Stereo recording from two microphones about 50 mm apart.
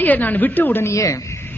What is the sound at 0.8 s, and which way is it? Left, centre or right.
Speech, left.